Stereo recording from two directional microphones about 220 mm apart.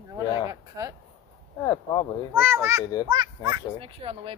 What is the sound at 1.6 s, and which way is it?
Speech, 15° left (ahead or behind).